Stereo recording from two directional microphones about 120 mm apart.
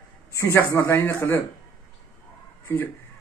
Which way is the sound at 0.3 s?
20° left (ahead or behind).